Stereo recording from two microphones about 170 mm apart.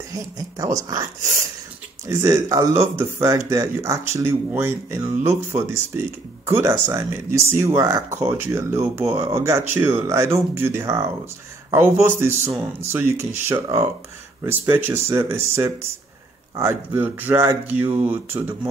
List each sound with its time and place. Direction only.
0.1 s speech: 20° right (ahead or behind)
2.0 s a man's voice: 20° right (ahead or behind)